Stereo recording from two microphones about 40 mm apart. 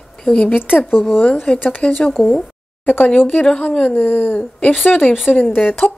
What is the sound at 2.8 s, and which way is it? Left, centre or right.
Speech, left.